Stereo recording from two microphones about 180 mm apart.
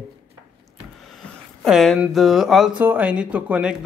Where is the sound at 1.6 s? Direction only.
Centre (ahead or behind).